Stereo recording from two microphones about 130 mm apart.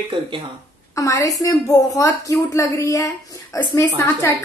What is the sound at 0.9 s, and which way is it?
A woman's voice, 25° left (ahead or behind).